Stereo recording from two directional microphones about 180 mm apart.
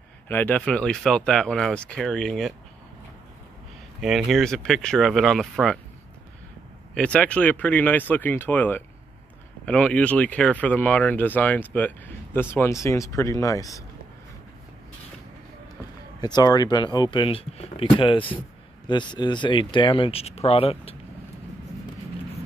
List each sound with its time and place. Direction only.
0.3 s speech: 10° left (ahead or behind)
4.0 s speech: centre (ahead or behind)
7.0 s speech: 5° left (ahead or behind)
16.2 s speech: 20° left (ahead or behind)